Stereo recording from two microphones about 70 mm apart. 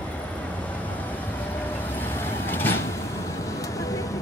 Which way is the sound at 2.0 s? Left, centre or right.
Left.